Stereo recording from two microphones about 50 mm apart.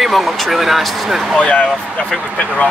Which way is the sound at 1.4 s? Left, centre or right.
Left.